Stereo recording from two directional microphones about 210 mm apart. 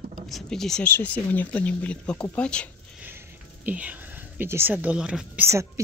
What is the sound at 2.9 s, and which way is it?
Speech, 10° right (ahead or behind).